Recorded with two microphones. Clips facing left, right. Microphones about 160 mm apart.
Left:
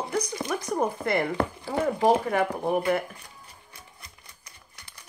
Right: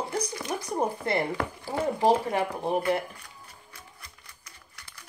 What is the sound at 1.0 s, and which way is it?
Speech, 30° right (ahead or behind).